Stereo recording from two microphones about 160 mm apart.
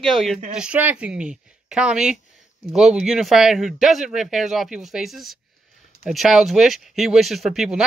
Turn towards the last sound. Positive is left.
turn(degrees=-5)  # may be behind; listen again after turning